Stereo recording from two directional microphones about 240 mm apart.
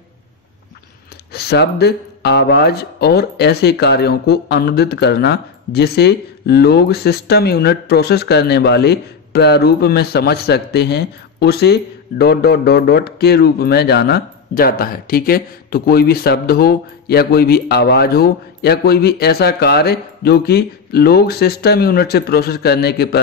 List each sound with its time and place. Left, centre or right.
1.3 s speech: left